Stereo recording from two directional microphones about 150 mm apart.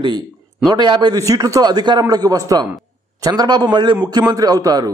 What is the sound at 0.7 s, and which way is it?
A man's voice, 30° right (ahead or behind).